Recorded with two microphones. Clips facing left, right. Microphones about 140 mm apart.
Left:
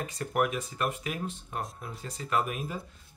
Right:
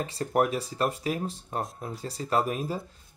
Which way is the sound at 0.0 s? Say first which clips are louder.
Right 3 dB; 30° right (ahead or behind).